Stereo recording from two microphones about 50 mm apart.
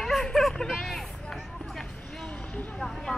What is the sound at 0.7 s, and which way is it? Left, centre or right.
Hubbub, centre.